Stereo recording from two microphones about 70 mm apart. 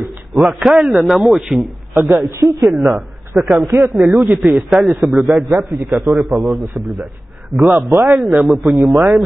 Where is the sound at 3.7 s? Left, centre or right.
Right.